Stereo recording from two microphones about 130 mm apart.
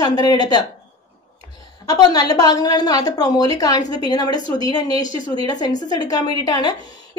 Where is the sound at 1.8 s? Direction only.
30° left (ahead or behind).